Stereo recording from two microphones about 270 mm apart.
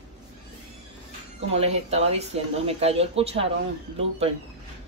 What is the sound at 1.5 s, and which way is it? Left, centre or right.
Speech, right.